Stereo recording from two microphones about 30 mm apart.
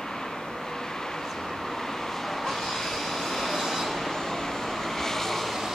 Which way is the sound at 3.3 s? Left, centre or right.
Centre.